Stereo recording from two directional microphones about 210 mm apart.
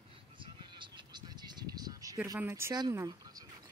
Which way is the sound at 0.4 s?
20° right (ahead or behind).